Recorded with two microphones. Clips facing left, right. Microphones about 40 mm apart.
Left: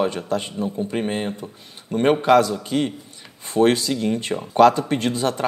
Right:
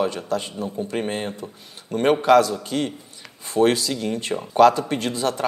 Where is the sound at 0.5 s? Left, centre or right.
Centre.